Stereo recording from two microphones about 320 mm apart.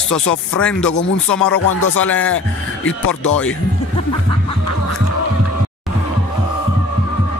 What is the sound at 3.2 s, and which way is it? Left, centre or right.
Speech, centre.